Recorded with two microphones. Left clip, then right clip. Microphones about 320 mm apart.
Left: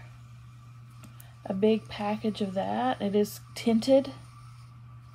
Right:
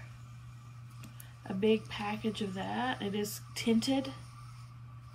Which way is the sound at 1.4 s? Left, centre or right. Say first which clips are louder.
Left 4 dB; left.